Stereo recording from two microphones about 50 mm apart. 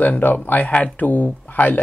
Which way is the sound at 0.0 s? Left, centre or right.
Left.